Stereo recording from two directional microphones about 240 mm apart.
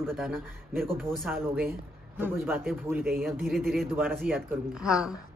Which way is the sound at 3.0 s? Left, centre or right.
Right.